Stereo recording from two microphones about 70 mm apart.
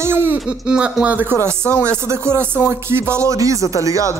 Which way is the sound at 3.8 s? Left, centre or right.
Right.